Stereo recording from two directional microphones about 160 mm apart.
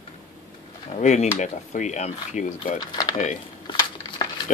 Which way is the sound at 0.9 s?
45° left (ahead or behind).